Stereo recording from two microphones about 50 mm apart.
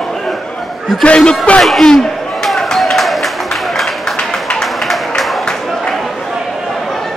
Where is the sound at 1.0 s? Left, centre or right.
Left.